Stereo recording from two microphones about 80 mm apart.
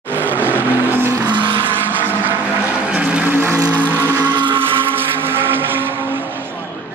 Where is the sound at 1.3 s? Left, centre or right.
Right.